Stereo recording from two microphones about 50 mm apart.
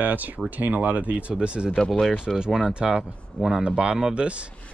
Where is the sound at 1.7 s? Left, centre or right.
Centre.